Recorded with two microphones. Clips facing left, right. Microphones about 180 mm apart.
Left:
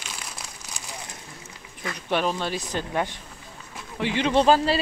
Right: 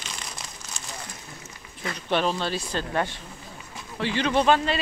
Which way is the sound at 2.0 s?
10° left (ahead or behind).